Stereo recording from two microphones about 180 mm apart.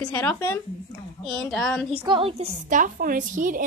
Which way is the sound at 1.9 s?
30° right (ahead or behind).